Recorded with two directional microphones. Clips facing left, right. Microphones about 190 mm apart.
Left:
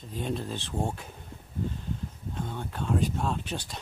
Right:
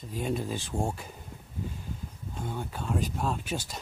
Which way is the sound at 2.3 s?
5° right (ahead or behind).